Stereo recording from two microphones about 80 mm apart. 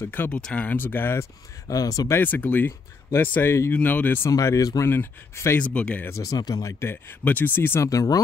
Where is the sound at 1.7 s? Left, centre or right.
Left.